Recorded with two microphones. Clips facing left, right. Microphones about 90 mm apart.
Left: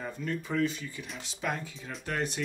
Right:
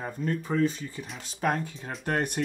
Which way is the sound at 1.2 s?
45° right (ahead or behind).